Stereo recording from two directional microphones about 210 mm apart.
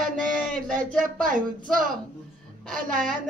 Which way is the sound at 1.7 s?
40° right (ahead or behind).